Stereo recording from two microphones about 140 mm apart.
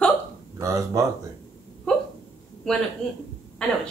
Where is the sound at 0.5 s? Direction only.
25° right (ahead or behind).